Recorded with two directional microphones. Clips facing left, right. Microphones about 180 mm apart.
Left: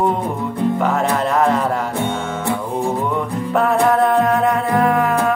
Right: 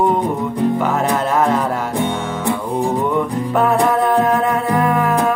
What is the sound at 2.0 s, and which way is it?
Music, 15° right (ahead or behind).